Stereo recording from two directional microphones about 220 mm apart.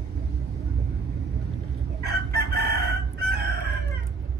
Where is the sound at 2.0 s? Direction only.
45° right (ahead or behind).